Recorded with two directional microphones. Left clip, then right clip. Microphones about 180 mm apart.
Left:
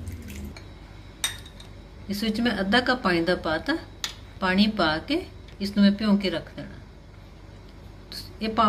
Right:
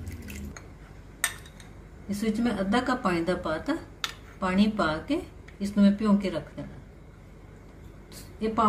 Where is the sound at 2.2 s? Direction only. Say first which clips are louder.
Left 2 dB; 10° right (ahead or behind).